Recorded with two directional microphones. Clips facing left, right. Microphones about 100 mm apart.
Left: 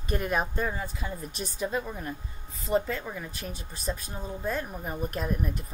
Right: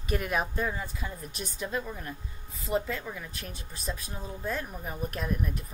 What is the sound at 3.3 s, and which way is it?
Speech, centre (ahead or behind).